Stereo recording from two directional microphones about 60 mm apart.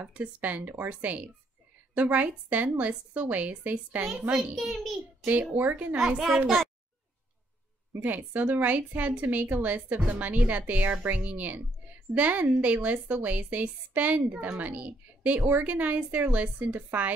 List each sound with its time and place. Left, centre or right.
0.0 s a woman's voice: right
4.1 s a child's voice: centre
5.6 s speech: right
6.1 s a child's voice: centre
7.9 s a woman's voice: right
15.4 s speech: right
15.7 s a woman's voice: right